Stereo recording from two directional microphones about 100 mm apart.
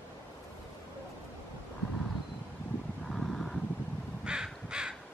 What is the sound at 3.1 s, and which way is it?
Vehicle, 5° left (ahead or behind).